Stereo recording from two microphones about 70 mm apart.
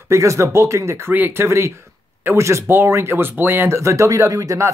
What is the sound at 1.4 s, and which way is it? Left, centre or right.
Speech, right.